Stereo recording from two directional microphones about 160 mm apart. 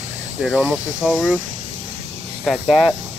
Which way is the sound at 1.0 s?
5° right (ahead or behind).